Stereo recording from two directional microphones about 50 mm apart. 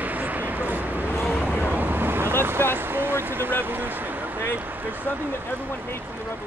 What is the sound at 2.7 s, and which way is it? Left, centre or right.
Speech, right.